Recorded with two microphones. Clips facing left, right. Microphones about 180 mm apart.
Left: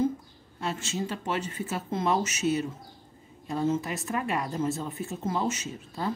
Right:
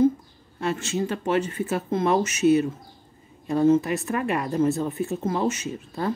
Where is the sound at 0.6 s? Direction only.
60° right (ahead or behind).